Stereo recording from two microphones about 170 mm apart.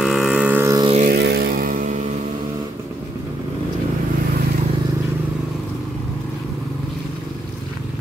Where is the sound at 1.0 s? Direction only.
70° right (ahead or behind); by 2.0 s 50° right (ahead or behind).